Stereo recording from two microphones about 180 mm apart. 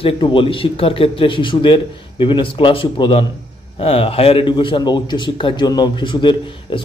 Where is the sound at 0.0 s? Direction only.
30° left (ahead or behind).